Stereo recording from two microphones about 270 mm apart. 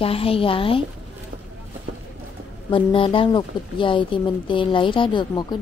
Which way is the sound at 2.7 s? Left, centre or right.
Centre.